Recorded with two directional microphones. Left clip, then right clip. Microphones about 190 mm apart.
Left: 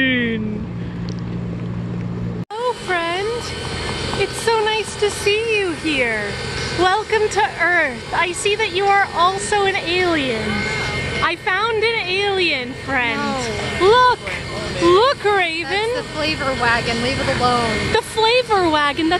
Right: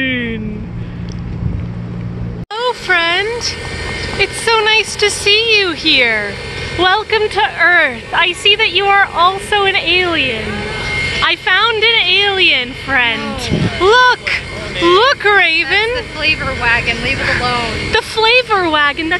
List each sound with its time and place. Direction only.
0.0 s vehicle: centre (ahead or behind)
2.6 s a sound: centre (ahead or behind)
4.2 s a woman's voice: centre (ahead or behind)
11.2 s a woman's voice: centre (ahead or behind)
17.4 s speech: 55° left (ahead or behind)
17.9 s a woman's voice: 5° left (ahead or behind)